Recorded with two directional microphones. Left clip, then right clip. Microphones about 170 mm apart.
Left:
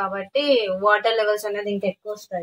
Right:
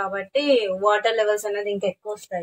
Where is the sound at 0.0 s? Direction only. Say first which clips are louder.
Left 1 dB; 25° right (ahead or behind); by 1.5 s 10° right (ahead or behind).